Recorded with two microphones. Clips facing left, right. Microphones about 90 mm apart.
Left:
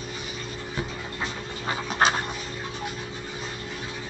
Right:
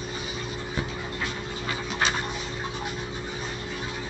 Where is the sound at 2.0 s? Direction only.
40° left (ahead or behind).